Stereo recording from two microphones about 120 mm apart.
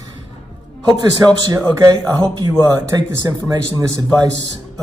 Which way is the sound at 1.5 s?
25° right (ahead or behind).